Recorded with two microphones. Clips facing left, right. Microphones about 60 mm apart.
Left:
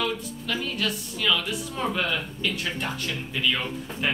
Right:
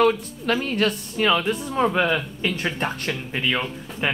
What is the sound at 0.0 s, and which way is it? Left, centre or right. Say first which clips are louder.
Speech: right 10 dB; right.